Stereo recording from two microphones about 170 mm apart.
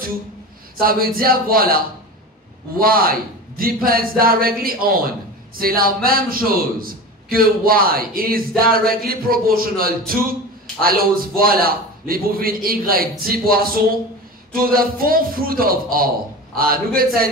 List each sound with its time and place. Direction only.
0.7 s a man's voice: 60° right (ahead or behind)
2.8 s a man's voice: 60° right (ahead or behind)